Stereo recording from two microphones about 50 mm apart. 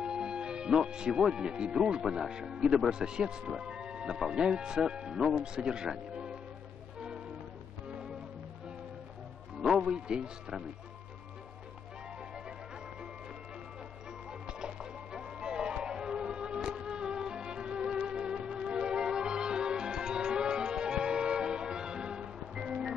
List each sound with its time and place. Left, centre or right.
0.0 s music: centre
0.9 s speech: centre
9.6 s speech: centre
14.4 s music: centre